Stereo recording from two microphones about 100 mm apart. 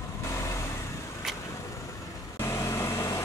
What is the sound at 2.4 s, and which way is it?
Vehicle, 30° left (ahead or behind).